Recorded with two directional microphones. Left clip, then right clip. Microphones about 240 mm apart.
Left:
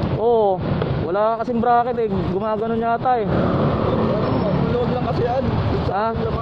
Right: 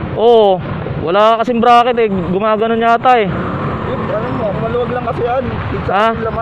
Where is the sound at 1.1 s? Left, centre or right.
Right.